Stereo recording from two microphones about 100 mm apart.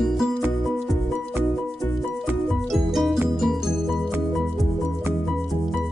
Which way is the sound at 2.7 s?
Centre (ahead or behind).